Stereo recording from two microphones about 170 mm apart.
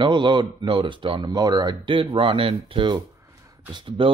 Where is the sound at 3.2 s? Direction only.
20° right (ahead or behind).